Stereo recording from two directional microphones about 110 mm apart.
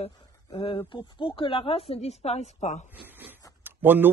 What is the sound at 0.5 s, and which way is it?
A woman's voice, 50° left (ahead or behind).